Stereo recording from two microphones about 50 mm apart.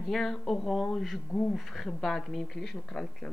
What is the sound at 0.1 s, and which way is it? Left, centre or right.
A woman's voice, centre.